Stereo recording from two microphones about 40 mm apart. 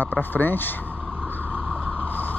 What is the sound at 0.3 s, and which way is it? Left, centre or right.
Speech, left.